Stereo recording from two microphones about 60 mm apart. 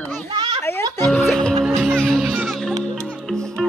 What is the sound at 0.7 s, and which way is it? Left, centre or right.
Music, left.